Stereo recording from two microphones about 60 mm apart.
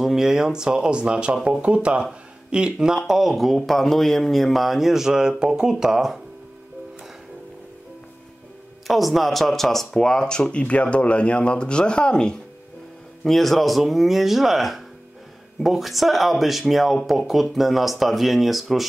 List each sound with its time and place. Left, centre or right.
0.0 s speech: centre
8.8 s speech: centre
13.2 s speech: centre